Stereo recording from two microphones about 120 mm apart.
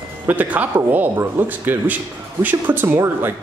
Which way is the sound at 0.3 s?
15° right (ahead or behind).